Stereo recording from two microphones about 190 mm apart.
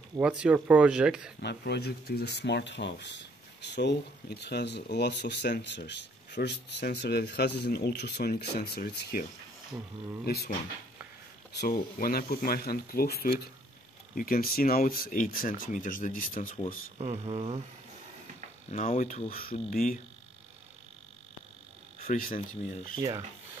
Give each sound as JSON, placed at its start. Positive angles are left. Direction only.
{"t": 0.2, "sound": "speech", "side_deg": -5}
{"t": 1.4, "sound": "speech", "side_deg": 60}
{"t": 10.2, "sound": "speech", "side_deg": 55}
{"t": 11.6, "sound": "speech", "side_deg": 50}
{"t": 17.0, "sound": "speech", "side_deg": -35}
{"t": 18.7, "sound": "speech", "side_deg": 35}
{"t": 22.0, "sound": "speech", "side_deg": 45}